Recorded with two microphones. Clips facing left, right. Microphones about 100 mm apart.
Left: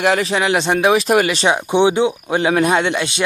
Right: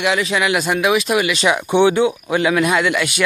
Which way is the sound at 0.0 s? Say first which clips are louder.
Left 2 dB; 40° left (ahead or behind).